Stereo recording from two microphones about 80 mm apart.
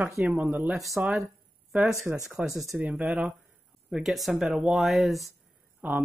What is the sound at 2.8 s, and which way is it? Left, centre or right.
Speech, centre.